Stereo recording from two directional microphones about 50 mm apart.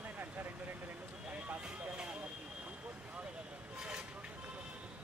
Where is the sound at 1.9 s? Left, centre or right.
Centre.